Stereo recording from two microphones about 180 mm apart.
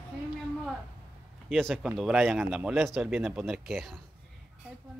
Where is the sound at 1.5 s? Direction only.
Centre (ahead or behind).